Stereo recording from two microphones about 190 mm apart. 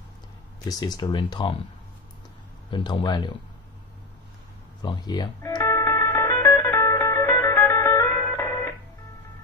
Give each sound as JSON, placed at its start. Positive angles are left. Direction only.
{"t": 0.7, "sound": "speech", "side_deg": 20}
{"t": 2.7, "sound": "speech", "side_deg": 25}
{"t": 4.8, "sound": "speech", "side_deg": 20}
{"t": 5.6, "sound": "music", "side_deg": 10}